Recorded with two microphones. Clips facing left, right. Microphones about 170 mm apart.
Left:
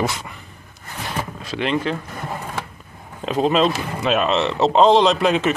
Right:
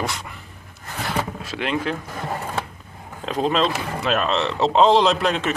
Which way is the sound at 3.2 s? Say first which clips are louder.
Left 3 dB; 5° left (ahead or behind).